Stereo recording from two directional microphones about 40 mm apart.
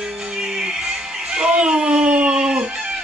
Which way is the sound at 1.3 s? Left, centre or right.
Right.